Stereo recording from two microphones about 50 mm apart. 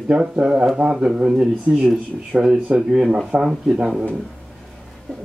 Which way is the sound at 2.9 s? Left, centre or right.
Centre.